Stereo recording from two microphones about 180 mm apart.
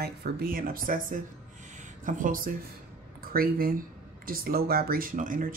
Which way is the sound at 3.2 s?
55° right (ahead or behind).